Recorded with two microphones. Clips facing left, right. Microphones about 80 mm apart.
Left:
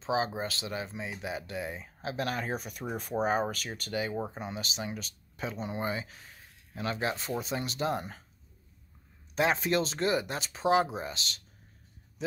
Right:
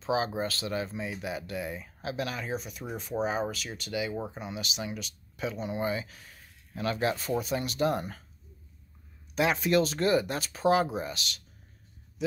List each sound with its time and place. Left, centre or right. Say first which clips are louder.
0.0 s speech: right 1 dB; left
2.2 s speech: left 1 dB; left
9.3 s speech: right 2 dB; left